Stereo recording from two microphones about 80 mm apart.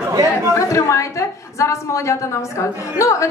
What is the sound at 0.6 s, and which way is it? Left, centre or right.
A woman's voice, left.